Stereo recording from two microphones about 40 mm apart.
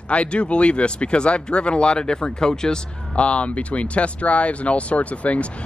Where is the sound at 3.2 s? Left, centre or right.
Left.